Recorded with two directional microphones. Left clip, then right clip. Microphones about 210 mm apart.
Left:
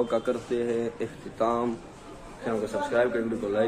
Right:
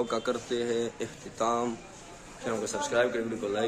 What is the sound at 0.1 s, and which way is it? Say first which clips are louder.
Speech: left 3 dB; 20° right (ahead or behind).